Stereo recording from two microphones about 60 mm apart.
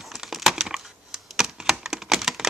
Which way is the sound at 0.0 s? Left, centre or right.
Centre.